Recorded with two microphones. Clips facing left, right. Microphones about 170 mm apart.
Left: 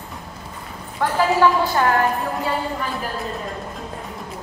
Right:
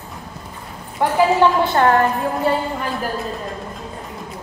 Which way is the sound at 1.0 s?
20° right (ahead or behind).